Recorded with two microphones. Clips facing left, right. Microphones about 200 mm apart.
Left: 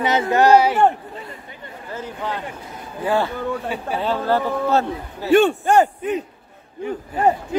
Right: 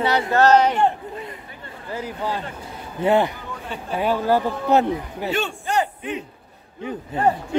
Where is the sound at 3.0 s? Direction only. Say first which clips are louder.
Right 2 dB; 20° right (ahead or behind).